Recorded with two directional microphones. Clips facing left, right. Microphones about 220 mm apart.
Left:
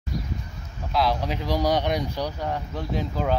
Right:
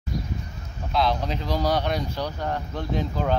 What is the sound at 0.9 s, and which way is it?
Speech, 5° left (ahead or behind).